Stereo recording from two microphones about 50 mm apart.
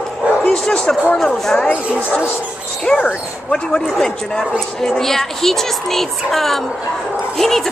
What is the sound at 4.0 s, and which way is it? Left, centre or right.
A woman's voice, centre.